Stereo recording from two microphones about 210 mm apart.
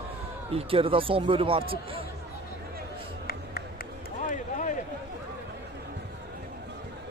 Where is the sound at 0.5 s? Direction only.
25° right (ahead or behind).